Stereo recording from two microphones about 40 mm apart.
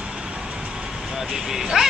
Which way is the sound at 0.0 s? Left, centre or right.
Right.